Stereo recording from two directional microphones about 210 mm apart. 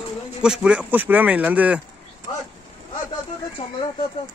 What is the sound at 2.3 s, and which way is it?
Vehicle, 20° left (ahead or behind).